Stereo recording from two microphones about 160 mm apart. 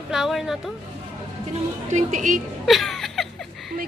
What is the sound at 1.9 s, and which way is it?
Speech, 50° right (ahead or behind).